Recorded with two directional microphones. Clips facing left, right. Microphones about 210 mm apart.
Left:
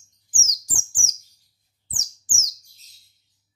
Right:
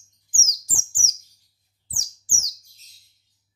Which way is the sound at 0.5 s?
15° left (ahead or behind).